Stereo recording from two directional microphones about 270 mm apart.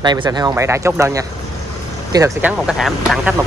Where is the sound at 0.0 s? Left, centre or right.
Centre.